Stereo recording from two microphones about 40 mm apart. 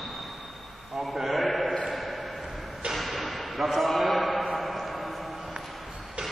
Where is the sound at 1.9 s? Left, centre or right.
Centre.